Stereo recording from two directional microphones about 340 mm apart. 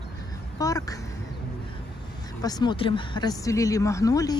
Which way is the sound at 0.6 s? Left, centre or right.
Centre.